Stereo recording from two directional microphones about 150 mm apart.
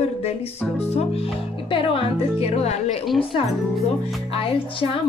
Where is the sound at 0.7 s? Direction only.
40° left (ahead or behind).